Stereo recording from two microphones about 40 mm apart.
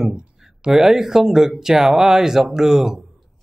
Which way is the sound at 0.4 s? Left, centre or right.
Centre.